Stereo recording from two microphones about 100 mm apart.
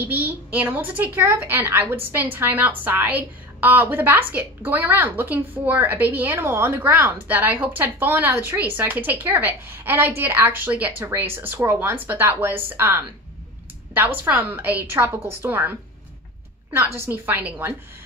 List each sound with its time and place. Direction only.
0.0 s a woman's voice: 15° right (ahead or behind)
16.7 s a woman's voice: 25° right (ahead or behind)